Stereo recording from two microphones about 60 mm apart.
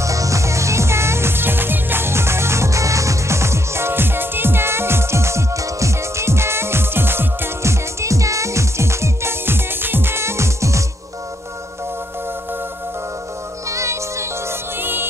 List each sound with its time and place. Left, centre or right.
0.0 s music: right
13.7 s music: right
14.8 s music: right